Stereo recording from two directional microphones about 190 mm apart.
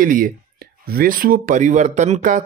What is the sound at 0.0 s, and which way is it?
Speech, 50° right (ahead or behind).